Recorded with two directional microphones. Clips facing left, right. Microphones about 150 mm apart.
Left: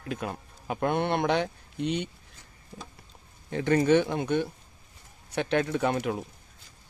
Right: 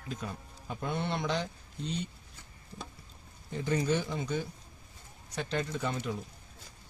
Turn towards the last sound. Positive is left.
turn(degrees=65)  # may be behind; listen again after turning